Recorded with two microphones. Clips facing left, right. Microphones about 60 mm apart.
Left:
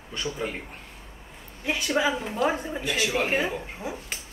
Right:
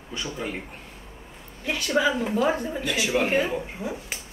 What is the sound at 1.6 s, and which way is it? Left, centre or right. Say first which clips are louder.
Speech: right 1 dB; centre.